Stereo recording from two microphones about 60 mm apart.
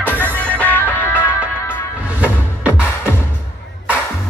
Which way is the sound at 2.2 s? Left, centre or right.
Right.